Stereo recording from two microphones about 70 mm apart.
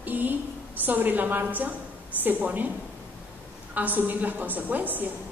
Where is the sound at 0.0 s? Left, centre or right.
Right.